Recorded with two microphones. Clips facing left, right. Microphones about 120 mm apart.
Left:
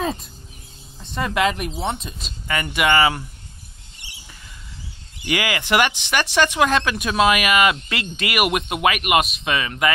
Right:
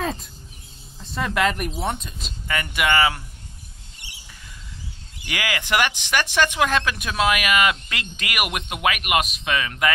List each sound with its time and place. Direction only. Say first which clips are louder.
0.0 s speech: left 2 dB; centre (ahead or behind); by 3.2 s 15° left (ahead or behind)
5.3 s speech: left 5 dB; 10° left (ahead or behind)
5.8 s speech: left 2 dB; 25° left (ahead or behind)
6.3 s speech: left 3 dB; 10° left (ahead or behind)